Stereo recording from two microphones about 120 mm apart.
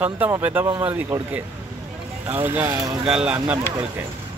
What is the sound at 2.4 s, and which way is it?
Speech, 15° right (ahead or behind).